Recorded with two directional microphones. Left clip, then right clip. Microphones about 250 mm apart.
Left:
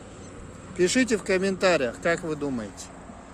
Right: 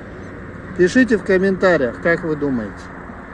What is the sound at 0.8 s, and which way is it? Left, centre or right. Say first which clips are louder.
Speech: right 8 dB; centre.